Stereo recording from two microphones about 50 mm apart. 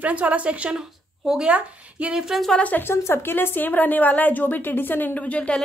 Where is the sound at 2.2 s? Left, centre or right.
Centre.